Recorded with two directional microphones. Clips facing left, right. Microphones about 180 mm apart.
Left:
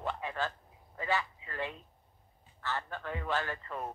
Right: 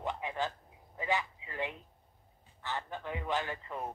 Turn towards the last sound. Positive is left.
turn(degrees=-15)  # may be behind; listen again after turning